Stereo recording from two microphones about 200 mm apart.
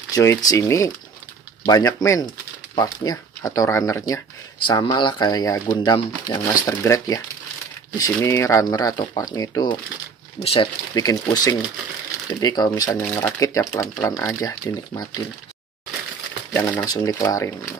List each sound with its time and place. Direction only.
0.1 s speech: 15° left (ahead or behind)
10.4 s speech: 30° left (ahead or behind)
11.0 s speech: 20° left (ahead or behind)
16.5 s speech: 10° left (ahead or behind)